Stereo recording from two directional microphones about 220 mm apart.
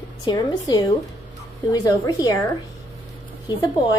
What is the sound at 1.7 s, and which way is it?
Speech, 15° left (ahead or behind).